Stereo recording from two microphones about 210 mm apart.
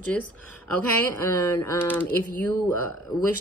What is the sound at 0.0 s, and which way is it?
A woman's voice, 5° left (ahead or behind).